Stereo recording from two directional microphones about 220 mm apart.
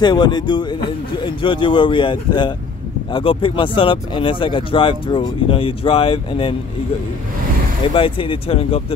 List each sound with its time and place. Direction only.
0.0 s speech: 20° left (ahead or behind)
7.9 s speech: 25° left (ahead or behind)